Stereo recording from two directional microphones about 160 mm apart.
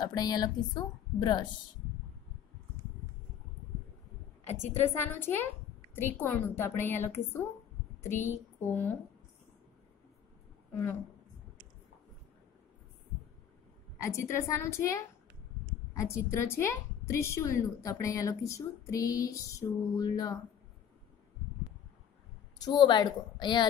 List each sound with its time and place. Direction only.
0.0 s a woman's voice: 25° left (ahead or behind)
4.6 s a woman's voice: 15° left (ahead or behind)
13.9 s a woman's voice: 20° left (ahead or behind)
22.6 s a woman's voice: 25° left (ahead or behind)